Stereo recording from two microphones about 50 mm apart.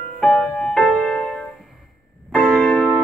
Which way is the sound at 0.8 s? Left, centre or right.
Left.